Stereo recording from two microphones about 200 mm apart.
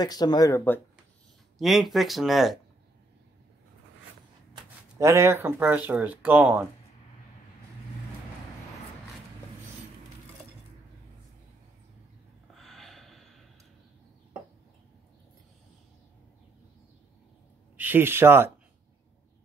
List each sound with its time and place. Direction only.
0.0 s speech: 20° left (ahead or behind)
1.6 s speech: centre (ahead or behind)
4.6 s speech: 15° right (ahead or behind)
12.5 s snort: centre (ahead or behind)
17.7 s speech: 10° right (ahead or behind)